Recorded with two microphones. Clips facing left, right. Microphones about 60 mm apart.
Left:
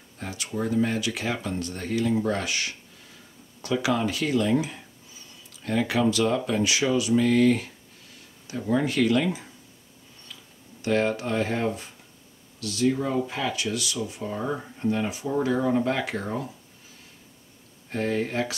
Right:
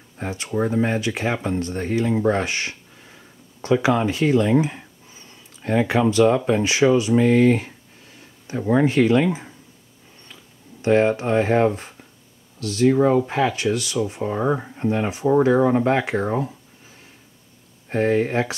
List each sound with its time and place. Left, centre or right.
0.2 s speech: right
10.8 s speech: right
17.8 s speech: right